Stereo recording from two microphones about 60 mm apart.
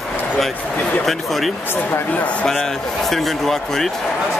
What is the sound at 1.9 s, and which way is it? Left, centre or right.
Speech, left.